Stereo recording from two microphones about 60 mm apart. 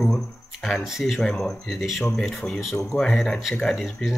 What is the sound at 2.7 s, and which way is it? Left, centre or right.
Speech, centre.